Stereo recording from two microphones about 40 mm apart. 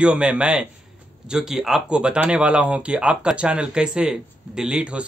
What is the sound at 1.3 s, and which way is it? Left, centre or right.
Speech, centre.